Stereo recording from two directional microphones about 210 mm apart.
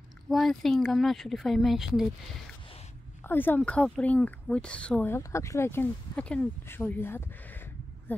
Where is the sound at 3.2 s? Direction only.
10° left (ahead or behind).